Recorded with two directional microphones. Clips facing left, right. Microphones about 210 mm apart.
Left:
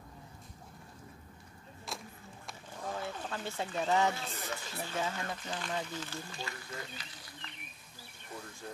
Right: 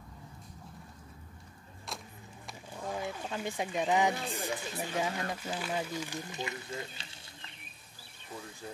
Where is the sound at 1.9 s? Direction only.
Centre (ahead or behind).